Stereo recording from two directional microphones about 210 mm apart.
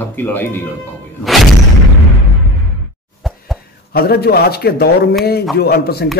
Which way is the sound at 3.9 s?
50° left (ahead or behind).